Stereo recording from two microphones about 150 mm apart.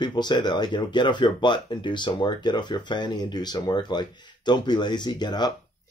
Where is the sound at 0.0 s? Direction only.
30° left (ahead or behind).